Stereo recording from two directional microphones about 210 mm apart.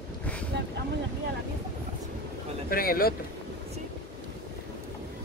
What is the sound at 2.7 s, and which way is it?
Speech, 45° left (ahead or behind).